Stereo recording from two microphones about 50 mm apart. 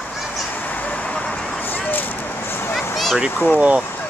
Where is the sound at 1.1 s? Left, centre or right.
Centre.